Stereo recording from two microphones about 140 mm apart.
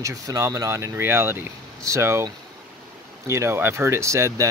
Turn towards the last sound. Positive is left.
turn(degrees=-20)  # may be behind; listen again after turning